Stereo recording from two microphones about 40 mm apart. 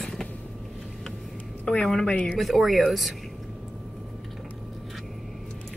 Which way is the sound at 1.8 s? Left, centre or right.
Centre.